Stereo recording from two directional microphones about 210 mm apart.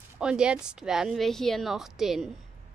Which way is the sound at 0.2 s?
5° right (ahead or behind).